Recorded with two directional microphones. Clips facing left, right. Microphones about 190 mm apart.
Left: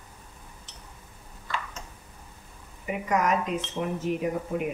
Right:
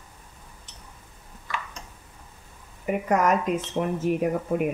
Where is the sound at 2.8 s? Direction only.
50° right (ahead or behind).